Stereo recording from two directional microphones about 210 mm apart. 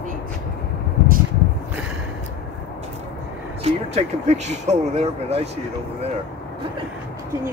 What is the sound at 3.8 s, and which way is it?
Speech, 30° right (ahead or behind).